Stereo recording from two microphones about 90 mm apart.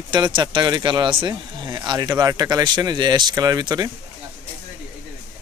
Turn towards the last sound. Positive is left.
turn(degrees=-45)  # may be behind; listen again after turning